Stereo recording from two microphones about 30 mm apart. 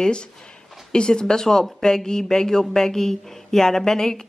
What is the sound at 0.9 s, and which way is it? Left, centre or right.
Speech, left.